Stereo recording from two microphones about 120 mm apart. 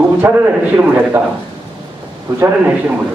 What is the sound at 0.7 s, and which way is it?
Speech, 10° right (ahead or behind).